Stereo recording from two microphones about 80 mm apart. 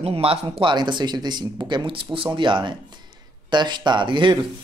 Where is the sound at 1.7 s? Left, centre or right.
Right.